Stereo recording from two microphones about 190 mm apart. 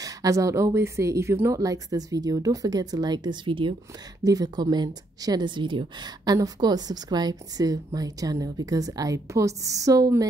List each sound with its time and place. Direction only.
0.0 s a woman's voice: 20° right (ahead or behind)